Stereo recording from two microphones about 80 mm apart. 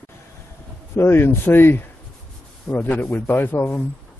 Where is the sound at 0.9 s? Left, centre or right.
Left.